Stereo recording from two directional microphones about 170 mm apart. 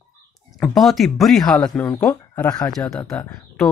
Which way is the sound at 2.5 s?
20° left (ahead or behind).